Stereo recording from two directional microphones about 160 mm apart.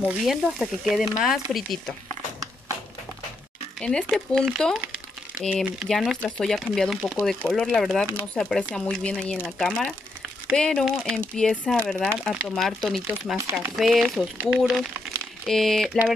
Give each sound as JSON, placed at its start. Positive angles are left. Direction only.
{"t": 0.1, "sound": "speech", "side_deg": 0}
{"t": 3.8, "sound": "speech", "side_deg": 5}
{"t": 13.0, "sound": "speech", "side_deg": -10}
{"t": 13.7, "sound": "speech", "side_deg": 0}